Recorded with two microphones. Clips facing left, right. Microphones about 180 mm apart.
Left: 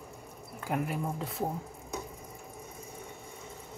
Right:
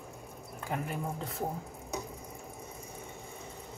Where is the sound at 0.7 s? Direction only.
5° left (ahead or behind).